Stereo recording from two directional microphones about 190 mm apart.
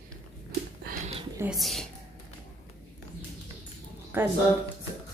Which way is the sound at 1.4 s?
Centre (ahead or behind).